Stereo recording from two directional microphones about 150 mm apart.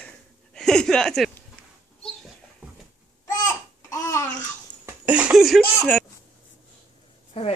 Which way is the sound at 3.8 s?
20° left (ahead or behind).